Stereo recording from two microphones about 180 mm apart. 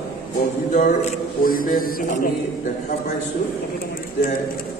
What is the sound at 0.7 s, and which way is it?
Speech, 45° left (ahead or behind).